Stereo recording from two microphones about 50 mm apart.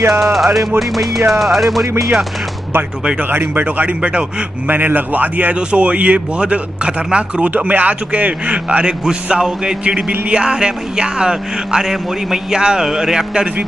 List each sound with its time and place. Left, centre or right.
0.1 s speech: centre
3.2 s speech: right
3.6 s speech: right
4.6 s speech: right; by 13.5 s centre